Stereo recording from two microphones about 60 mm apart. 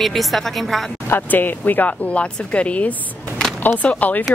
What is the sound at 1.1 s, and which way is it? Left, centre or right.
Speech, left.